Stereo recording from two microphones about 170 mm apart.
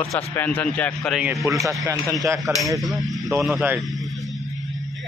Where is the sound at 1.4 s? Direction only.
20° right (ahead or behind).